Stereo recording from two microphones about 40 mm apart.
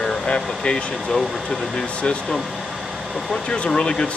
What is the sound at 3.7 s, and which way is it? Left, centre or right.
Speech, centre.